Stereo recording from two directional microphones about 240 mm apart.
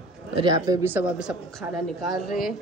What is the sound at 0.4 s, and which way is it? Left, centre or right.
A man's voice, centre.